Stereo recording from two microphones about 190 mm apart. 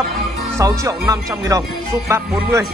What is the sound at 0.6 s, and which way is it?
Speech, 15° right (ahead or behind).